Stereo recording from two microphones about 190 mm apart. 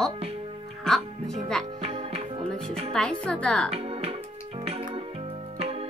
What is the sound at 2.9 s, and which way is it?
Speech, 5° left (ahead or behind).